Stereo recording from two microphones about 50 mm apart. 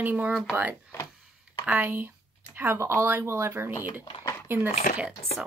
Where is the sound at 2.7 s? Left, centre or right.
Right.